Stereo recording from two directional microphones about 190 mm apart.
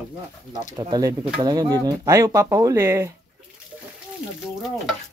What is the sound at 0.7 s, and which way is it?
Speech, 20° right (ahead or behind).